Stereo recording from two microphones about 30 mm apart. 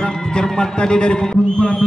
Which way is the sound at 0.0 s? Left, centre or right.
Left.